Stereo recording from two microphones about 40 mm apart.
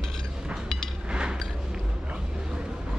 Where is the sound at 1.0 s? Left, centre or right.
Right.